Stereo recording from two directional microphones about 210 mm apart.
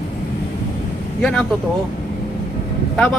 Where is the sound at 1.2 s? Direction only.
5° left (ahead or behind).